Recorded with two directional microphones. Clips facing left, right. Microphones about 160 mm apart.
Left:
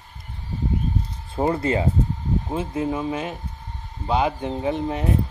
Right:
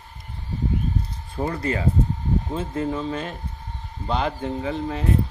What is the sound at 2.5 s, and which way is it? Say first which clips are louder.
Speech: left 4 dB; 10° left (ahead or behind).